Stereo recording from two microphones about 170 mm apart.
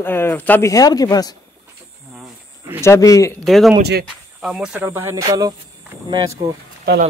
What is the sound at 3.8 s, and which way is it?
Speech, 70° right (ahead or behind).